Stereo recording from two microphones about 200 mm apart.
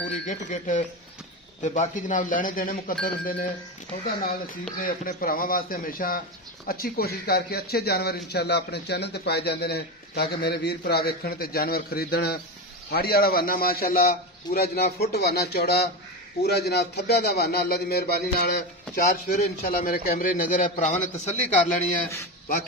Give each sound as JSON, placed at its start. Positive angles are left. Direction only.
{"t": 0.3, "sound": "speech", "side_deg": 40}
{"t": 4.8, "sound": "speech", "side_deg": 45}